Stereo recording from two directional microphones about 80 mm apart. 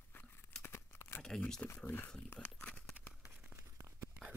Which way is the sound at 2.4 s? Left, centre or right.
Centre.